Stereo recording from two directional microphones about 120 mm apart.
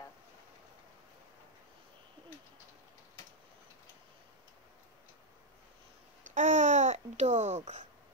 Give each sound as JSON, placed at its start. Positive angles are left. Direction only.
{"t": 6.2, "sound": "babbling", "side_deg": -90}